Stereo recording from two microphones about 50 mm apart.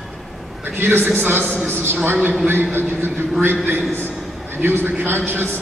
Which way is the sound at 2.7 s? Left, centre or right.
Right.